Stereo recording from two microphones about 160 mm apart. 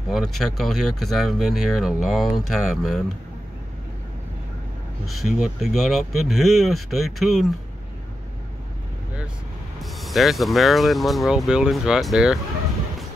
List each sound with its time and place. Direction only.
0.1 s speech: centre (ahead or behind)
5.2 s speech: centre (ahead or behind)
9.8 s speech: centre (ahead or behind)